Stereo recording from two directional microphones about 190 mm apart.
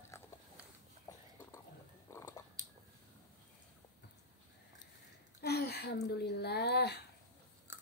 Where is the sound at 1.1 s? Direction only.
20° left (ahead or behind).